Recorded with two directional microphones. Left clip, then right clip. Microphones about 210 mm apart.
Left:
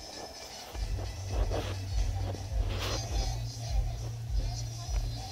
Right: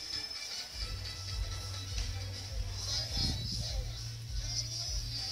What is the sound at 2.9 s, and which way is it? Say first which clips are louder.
Music: right 3 dB; 10° left (ahead or behind).